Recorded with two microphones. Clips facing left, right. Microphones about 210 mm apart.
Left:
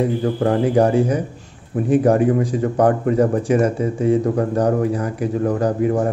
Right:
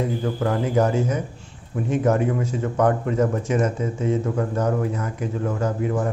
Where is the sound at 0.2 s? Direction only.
30° left (ahead or behind).